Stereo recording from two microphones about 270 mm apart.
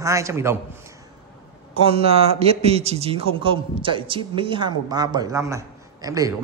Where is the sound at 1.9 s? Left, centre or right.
Right.